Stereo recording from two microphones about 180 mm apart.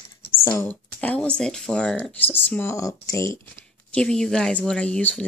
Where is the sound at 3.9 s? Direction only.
5° left (ahead or behind).